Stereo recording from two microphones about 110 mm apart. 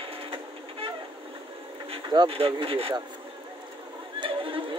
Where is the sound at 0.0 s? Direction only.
50° right (ahead or behind).